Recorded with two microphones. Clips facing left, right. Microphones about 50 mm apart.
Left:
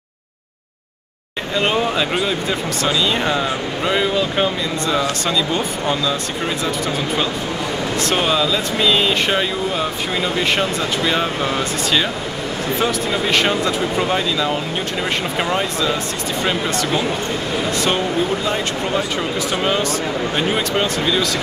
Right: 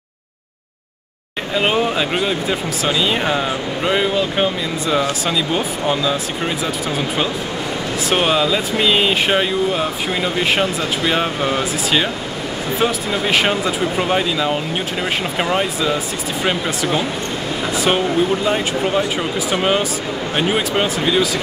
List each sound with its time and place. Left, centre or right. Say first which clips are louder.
1.5 s speech: right 1 dB; centre
8.2 s speech: right 3 dB; centre